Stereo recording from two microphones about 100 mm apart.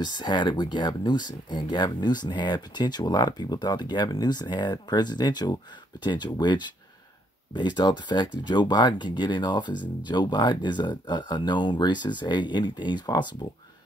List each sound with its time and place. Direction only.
0.0 s speech: 45° left (ahead or behind)